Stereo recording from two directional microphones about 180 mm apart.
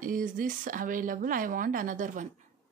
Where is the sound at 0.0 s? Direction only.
50° right (ahead or behind).